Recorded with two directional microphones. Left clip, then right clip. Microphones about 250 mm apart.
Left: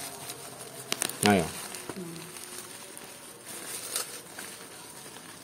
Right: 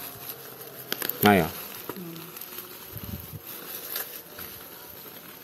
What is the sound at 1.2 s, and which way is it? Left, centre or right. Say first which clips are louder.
Speech: right 5 dB; right.